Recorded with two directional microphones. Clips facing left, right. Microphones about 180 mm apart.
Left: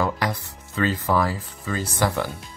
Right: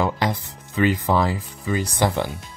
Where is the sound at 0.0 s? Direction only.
20° right (ahead or behind).